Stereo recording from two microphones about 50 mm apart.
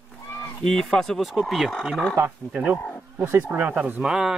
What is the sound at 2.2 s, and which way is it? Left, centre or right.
Speech, right.